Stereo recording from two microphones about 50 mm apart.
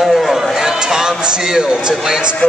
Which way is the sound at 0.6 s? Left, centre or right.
Centre.